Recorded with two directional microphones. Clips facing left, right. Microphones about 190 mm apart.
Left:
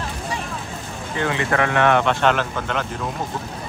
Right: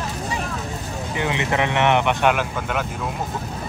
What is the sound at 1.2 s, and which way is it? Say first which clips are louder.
Speech: left 1 dB; 15° right (ahead or behind).